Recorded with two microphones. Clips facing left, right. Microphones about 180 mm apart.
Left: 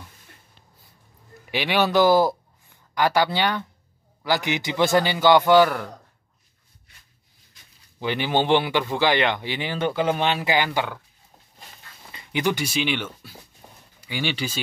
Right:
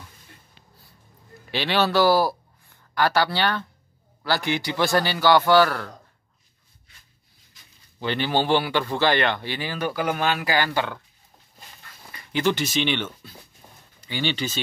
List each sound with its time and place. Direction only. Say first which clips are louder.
1.5 s speech: left 1 dB; 15° left (ahead or behind)
8.0 s speech: left 1 dB; 15° left (ahead or behind)
12.1 s speech: right 1 dB; 20° left (ahead or behind)